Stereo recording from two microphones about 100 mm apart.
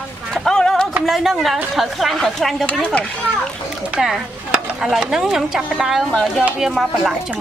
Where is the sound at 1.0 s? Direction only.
Centre (ahead or behind).